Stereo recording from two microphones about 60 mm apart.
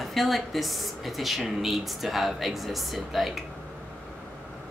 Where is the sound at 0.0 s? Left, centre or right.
Centre.